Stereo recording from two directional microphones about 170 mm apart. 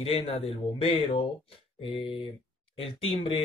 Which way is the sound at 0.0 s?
30° left (ahead or behind).